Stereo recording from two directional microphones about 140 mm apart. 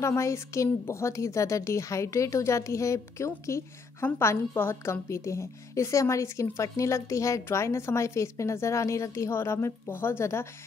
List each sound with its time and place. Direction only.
0.0 s a woman's voice: 20° left (ahead or behind)